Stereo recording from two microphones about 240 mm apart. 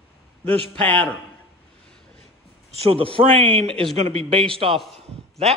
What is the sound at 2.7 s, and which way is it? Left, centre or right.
Speech, right.